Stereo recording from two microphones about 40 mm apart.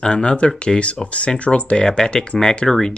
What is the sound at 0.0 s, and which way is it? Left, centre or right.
Speech, left.